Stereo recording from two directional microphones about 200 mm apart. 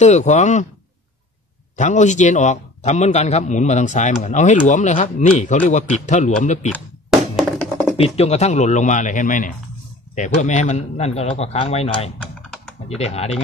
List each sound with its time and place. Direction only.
0.0 s a man's voice: 35° left (ahead or behind)
1.8 s a man's voice: 35° left (ahead or behind)
7.1 s thunk: centre (ahead or behind)
8.0 s a man's voice: 30° left (ahead or behind)
12.2 s typing: 5° left (ahead or behind)
12.8 s a man's voice: 30° left (ahead or behind)